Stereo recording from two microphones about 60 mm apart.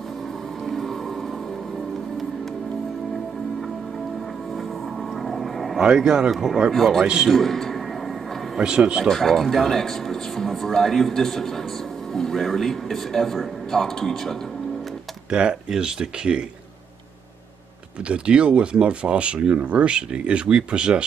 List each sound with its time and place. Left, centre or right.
0.7 s a sound: centre
5.2 s vehicle: centre
5.8 s speech: centre
8.5 s speech: centre
9.1 s speech: centre
15.2 s speech: centre
18.0 s speech: centre